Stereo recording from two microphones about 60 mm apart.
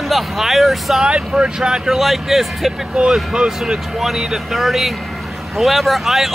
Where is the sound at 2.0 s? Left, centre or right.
Centre.